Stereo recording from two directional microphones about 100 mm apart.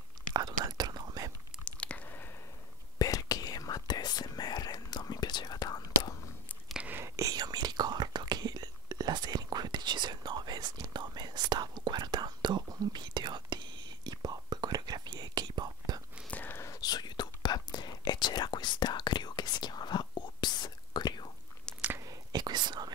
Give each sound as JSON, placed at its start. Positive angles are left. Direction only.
{"t": 0.3, "sound": "whispering", "side_deg": -45}
{"t": 1.6, "sound": "chewing", "side_deg": 10}
{"t": 3.0, "sound": "whispering", "side_deg": 40}
{"t": 6.8, "sound": "whispering", "side_deg": -20}
{"t": 7.2, "sound": "whispering", "side_deg": -40}
{"t": 16.3, "sound": "whispering", "side_deg": 15}
{"t": 16.6, "sound": "whispering", "side_deg": 40}
{"t": 21.7, "sound": "biting", "side_deg": 10}
{"t": 22.0, "sound": "whispering", "side_deg": -45}